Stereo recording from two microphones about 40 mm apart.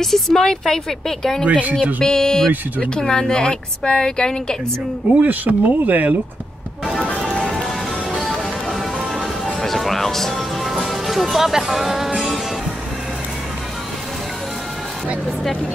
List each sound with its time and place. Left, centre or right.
0.0 s a woman's voice: centre
1.4 s speech: right
2.0 s a woman's voice: centre
5.2 s speech: right
8.2 s music: centre